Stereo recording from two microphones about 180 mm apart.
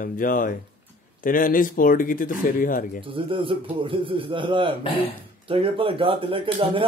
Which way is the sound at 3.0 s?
30° right (ahead or behind).